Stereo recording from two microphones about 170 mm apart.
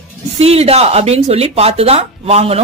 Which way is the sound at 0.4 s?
35° right (ahead or behind).